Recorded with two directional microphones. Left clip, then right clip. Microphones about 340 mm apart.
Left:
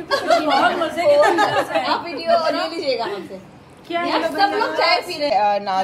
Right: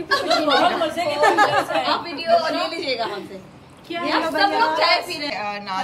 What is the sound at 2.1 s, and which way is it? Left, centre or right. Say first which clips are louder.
A woman's voice: left 1 dB; centre.